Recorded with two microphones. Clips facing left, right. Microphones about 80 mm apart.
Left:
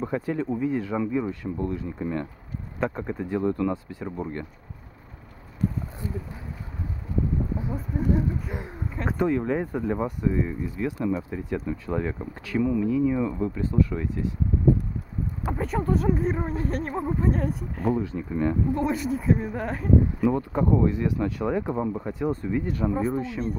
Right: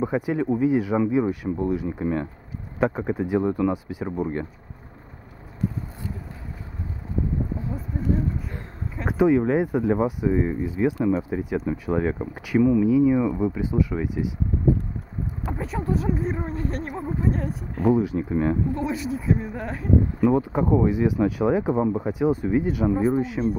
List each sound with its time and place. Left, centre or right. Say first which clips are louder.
0.0 s speech: right 4 dB; centre
7.7 s speech: left 1 dB; centre
8.9 s speech: right 5 dB; centre
15.4 s speech: left 2 dB; centre
17.9 s speech: right 5 dB; centre
18.8 s speech: left 1 dB; centre
20.3 s speech: right 2 dB; centre